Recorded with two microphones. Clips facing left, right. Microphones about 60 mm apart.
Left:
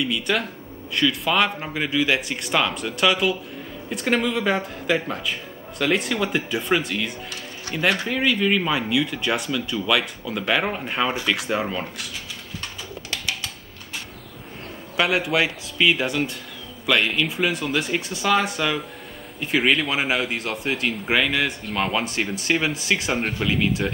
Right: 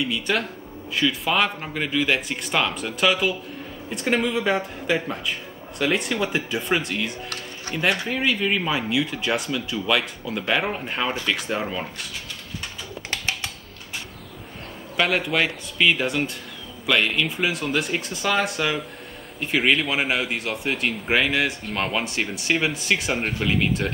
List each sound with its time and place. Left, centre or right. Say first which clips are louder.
0.1 s speech: left 1 dB; centre
13.1 s a sound: right 1 dB; right
15.0 s speech: left 1 dB; centre